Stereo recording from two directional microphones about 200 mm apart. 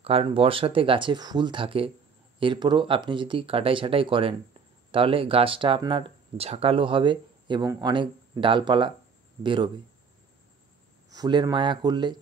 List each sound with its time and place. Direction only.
0.0 s speech: 30° right (ahead or behind)
11.1 s speech: 20° right (ahead or behind)